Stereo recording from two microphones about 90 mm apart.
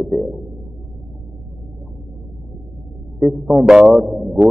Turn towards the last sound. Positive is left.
turn(degrees=-5)  # may be behind; listen again after turning